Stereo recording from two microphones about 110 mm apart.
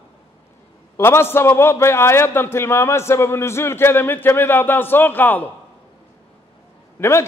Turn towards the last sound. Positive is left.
turn(degrees=20)  # may be behind; listen again after turning